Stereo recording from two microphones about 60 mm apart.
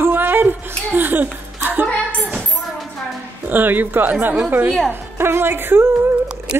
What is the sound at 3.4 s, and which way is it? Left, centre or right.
Speech, right.